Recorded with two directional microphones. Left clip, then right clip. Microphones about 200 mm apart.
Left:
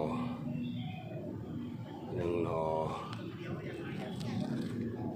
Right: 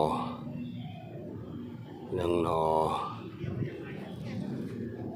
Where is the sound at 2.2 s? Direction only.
45° right (ahead or behind).